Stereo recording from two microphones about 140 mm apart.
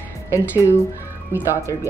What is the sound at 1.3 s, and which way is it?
Speech, 15° right (ahead or behind).